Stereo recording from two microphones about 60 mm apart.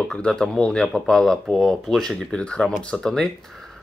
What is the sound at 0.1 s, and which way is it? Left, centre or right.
Speech, centre.